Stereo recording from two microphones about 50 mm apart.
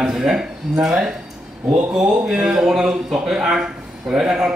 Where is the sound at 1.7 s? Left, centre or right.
Right.